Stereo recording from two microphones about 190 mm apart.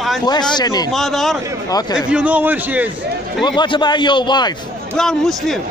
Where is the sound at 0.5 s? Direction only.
20° left (ahead or behind).